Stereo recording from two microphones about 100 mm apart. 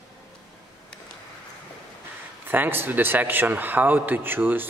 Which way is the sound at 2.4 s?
20° right (ahead or behind).